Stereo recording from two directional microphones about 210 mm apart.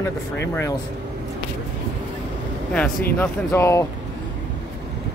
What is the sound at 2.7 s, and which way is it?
Speech, 5° left (ahead or behind).